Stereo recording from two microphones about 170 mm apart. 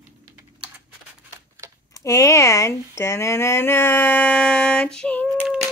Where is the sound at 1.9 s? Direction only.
20° left (ahead or behind); by 5.6 s centre (ahead or behind).